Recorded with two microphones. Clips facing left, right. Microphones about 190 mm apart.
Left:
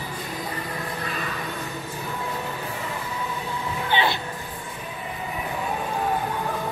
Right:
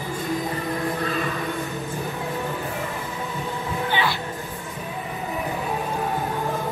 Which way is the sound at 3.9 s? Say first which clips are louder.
Left 2 dB; 25° left (ahead or behind).